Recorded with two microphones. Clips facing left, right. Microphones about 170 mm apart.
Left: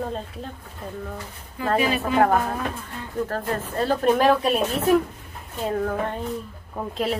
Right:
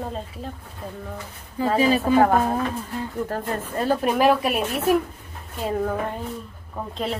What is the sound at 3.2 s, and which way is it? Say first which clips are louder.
Speech: even; 15° right (ahead or behind).